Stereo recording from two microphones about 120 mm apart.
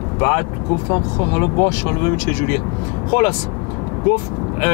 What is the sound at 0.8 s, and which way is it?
Speech, 25° left (ahead or behind).